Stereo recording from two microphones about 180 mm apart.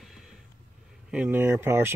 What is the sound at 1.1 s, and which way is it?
Speech, 10° right (ahead or behind).